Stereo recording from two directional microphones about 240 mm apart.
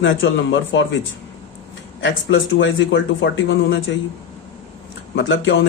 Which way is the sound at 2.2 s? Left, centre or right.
Left.